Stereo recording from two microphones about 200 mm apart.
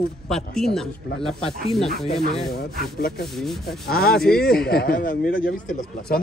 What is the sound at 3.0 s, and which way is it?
Speech, 50° left (ahead or behind).